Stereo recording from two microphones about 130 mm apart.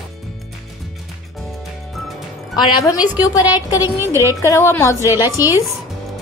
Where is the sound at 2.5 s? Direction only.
25° left (ahead or behind).